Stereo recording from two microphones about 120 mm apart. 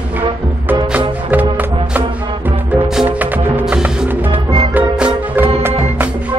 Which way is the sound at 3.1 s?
15° right (ahead or behind).